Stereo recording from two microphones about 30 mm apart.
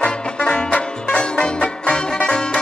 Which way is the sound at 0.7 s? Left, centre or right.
Left.